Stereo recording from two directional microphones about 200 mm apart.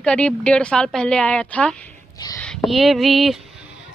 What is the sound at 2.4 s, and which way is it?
Speech, centre (ahead or behind).